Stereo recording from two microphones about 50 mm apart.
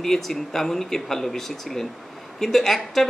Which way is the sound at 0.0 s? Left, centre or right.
Centre.